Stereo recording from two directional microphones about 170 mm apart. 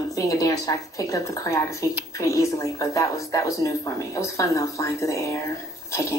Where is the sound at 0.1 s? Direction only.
20° left (ahead or behind).